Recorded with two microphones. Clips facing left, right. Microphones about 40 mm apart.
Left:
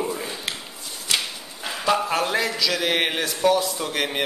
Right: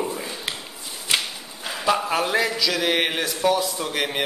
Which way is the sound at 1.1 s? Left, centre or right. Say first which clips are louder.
Right 1 dB; centre.